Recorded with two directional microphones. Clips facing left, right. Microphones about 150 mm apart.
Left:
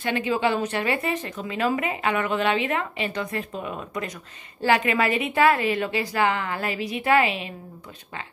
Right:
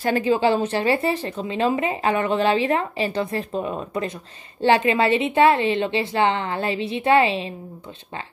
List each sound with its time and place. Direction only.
0.0 s a woman's voice: 35° right (ahead or behind)